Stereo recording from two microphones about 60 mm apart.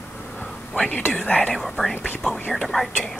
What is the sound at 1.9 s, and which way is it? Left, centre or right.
Speech, left.